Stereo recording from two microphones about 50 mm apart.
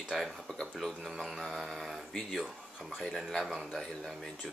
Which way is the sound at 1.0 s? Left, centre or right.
Centre.